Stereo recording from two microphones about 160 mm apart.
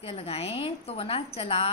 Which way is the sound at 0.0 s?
40° left (ahead or behind).